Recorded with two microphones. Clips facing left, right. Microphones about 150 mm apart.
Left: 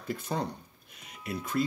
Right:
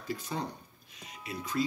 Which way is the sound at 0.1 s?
50° left (ahead or behind).